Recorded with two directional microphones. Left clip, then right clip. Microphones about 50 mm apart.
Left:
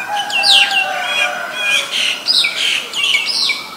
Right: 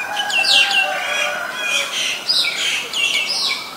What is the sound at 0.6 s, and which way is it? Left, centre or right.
Bird, centre.